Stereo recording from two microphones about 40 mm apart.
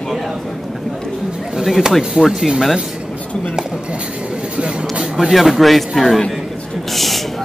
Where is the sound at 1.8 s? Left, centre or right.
Centre.